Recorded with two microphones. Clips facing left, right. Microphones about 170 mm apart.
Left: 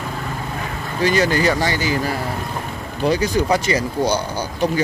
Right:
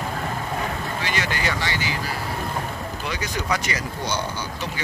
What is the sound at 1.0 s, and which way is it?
Speech, 40° left (ahead or behind).